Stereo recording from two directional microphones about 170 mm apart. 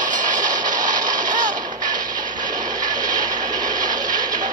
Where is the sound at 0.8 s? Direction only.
50° right (ahead or behind).